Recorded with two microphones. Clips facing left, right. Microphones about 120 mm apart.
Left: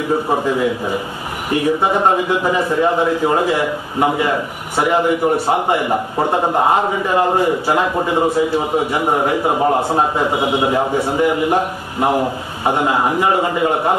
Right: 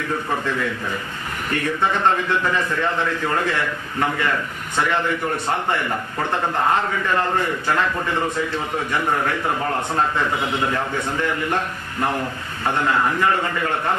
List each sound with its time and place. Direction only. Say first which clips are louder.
0.1 s a man's voice: left 8 dB; 25° left (ahead or behind)
0.5 s a man's voice: left 7 dB; 15° left (ahead or behind)